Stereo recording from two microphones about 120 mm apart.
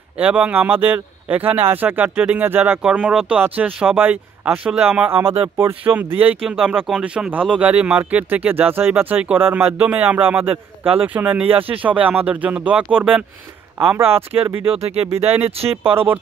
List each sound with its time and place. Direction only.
0.2 s speech: 10° right (ahead or behind)
5.2 s speech: 50° right (ahead or behind)
5.9 s speech: 15° right (ahead or behind)
11.4 s speech: 50° right (ahead or behind)
12.1 s speech: 15° right (ahead or behind)
14.7 s speech: 55° right (ahead or behind)
15.7 s speech: 20° right (ahead or behind)